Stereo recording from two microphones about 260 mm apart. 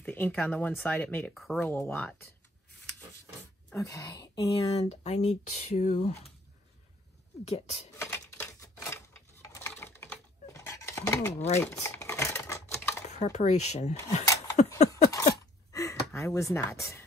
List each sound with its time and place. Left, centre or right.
0.0 s speech: centre
3.7 s speech: centre
7.4 s speech: left
8.0 s typewriter: centre
11.6 s a sound: centre
13.1 s speech: left
14.2 s a sound: centre
16.1 s speech: centre